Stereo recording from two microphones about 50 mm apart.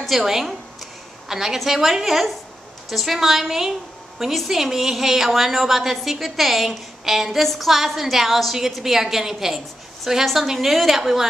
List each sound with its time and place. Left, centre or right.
0.0 s a woman's voice: centre